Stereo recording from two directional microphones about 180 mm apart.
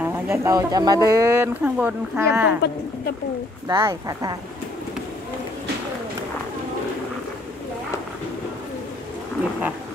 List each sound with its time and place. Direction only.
0.0 s speech: 15° right (ahead or behind)
3.6 s a woman's voice: 20° right (ahead or behind)